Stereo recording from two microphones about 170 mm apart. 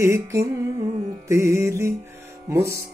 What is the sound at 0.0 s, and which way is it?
Music, 15° right (ahead or behind).